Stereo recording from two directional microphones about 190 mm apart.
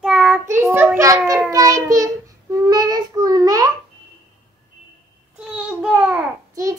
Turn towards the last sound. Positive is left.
turn(degrees=-10)  # may be behind; listen again after turning